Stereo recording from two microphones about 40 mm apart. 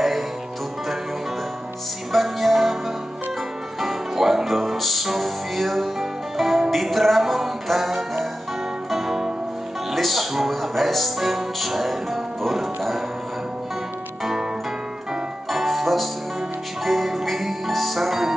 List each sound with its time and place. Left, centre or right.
2.1 s music: centre
3.8 s music: centre
15.5 s music: centre